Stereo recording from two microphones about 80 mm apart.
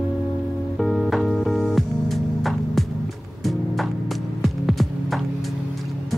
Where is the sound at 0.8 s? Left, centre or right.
Centre.